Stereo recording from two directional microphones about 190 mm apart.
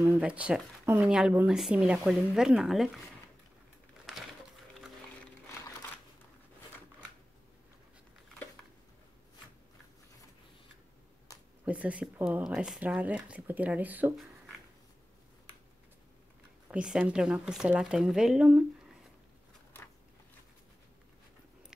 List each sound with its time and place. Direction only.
0.0 s speech: 5° right (ahead or behind)
11.3 s a sound: 20° left (ahead or behind)
11.6 s speech: 5° right (ahead or behind)
16.7 s speech: 5° right (ahead or behind)